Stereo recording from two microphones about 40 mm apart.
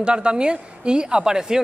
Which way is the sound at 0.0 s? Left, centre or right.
Right.